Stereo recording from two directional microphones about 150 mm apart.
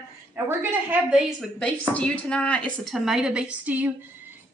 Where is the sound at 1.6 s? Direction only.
5° left (ahead or behind).